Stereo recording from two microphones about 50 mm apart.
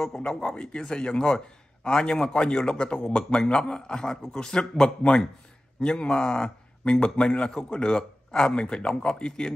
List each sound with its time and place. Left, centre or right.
0.2 s a man's voice: centre